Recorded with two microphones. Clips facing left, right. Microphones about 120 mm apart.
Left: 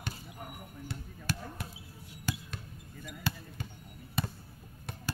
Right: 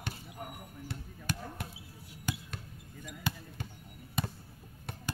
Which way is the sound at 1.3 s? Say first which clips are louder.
Even; 20° right (ahead or behind).